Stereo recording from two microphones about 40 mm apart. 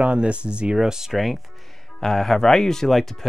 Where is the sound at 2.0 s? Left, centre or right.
Centre.